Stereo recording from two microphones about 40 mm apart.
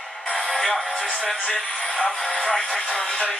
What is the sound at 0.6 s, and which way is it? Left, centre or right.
Speech, left.